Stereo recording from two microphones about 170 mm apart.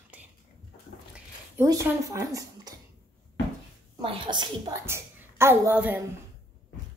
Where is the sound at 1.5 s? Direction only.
20° right (ahead or behind).